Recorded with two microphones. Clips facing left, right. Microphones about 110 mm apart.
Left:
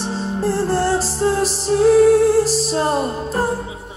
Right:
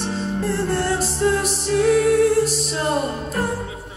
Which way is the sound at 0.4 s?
35° left (ahead or behind).